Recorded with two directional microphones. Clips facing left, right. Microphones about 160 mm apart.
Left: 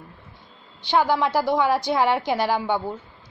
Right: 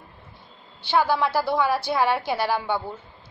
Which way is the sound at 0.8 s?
15° left (ahead or behind).